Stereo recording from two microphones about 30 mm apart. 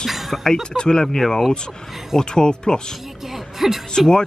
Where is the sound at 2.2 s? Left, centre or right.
Left.